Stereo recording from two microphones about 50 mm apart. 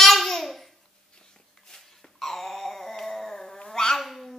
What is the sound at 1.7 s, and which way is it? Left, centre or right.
Dog, centre.